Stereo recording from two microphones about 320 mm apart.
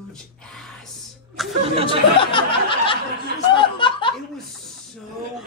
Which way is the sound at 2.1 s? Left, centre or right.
Centre.